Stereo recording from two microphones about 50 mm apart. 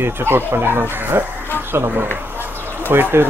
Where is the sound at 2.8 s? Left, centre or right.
Right.